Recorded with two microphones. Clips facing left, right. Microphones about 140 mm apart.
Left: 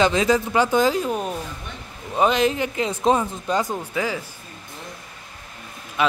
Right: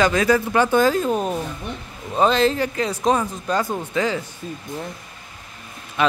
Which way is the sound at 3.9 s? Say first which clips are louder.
Right 4 dB; 5° left (ahead or behind).